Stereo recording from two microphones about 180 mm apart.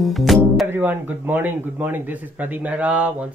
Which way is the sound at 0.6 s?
10° right (ahead or behind).